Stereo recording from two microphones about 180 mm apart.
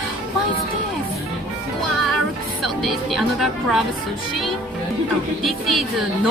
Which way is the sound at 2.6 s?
Centre (ahead or behind).